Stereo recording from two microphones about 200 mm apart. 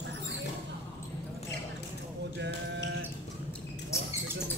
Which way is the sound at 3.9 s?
15° left (ahead or behind).